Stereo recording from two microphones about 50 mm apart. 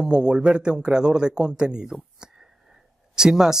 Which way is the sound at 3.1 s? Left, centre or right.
Centre.